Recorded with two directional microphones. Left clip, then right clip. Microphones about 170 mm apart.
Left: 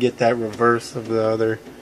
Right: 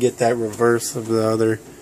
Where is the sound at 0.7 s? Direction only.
25° right (ahead or behind).